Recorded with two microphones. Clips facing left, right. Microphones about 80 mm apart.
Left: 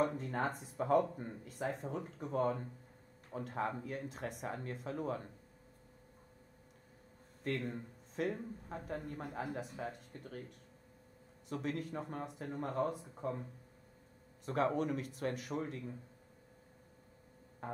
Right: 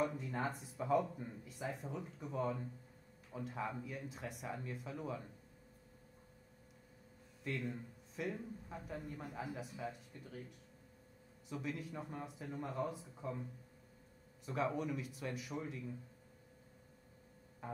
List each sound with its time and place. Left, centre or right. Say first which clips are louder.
0.2 s speech: left 3 dB; left
7.4 s speech: left 4 dB; left
11.4 s speech: left 4 dB; left
14.4 s speech: left 4 dB; left